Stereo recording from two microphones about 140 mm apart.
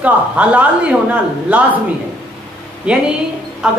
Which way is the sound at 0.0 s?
10° right (ahead or behind).